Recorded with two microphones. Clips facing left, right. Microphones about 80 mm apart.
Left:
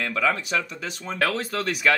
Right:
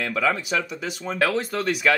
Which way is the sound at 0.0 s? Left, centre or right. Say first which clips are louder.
Right 1 dB; centre.